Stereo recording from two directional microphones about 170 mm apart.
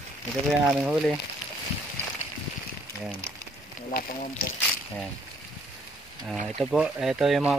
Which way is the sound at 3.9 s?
60° left (ahead or behind).